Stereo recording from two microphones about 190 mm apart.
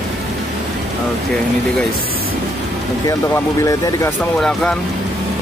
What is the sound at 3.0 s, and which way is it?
Speech, 15° left (ahead or behind).